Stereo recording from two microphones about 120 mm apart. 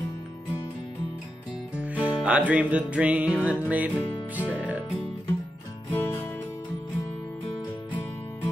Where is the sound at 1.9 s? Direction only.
10° right (ahead or behind).